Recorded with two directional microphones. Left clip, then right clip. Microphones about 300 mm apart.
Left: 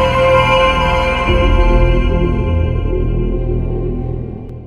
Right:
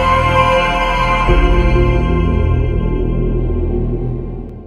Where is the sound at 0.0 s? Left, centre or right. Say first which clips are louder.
Left 1 dB; centre.